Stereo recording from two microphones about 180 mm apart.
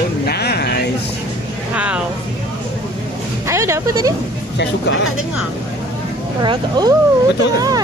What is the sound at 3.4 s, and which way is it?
Speech, 15° right (ahead or behind).